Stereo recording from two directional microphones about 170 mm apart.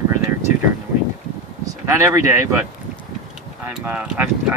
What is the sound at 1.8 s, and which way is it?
Speech, 15° right (ahead or behind).